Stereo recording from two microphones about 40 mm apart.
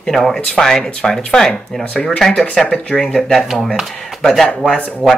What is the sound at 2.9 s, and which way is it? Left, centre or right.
Speech, centre.